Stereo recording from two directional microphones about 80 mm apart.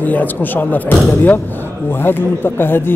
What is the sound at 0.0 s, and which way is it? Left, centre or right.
Speech, left.